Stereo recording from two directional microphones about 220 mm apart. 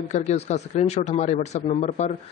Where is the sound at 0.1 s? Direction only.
30° left (ahead or behind).